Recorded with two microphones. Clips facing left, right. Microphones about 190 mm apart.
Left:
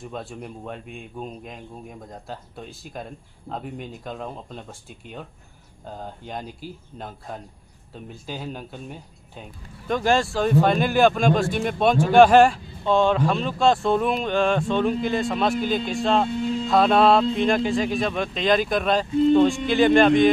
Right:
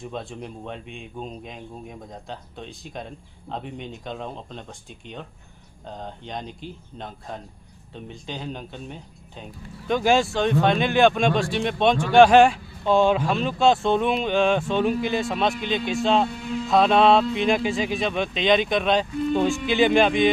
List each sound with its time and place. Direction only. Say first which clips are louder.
0.0 s speech: right 1 dB; 5° left (ahead or behind)
19.0 s speech: left 7 dB; 25° left (ahead or behind)
19.7 s speech: left 2 dB; centre (ahead or behind)